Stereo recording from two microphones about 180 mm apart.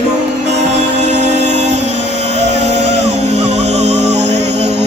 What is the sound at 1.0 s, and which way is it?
Music, 40° right (ahead or behind).